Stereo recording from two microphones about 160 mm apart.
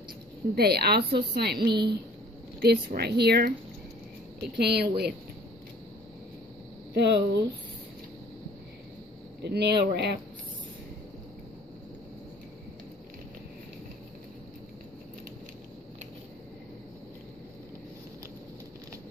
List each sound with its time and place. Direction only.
0.6 s speech: 80° right
1.7 s a woman's voice: 30° right (ahead or behind)
2.6 s speech: 80° right
6.9 s speech: 90° right
9.4 s speech: 90° right